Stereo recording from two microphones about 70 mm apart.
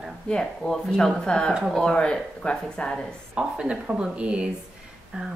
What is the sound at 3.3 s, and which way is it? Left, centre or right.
Speech, centre.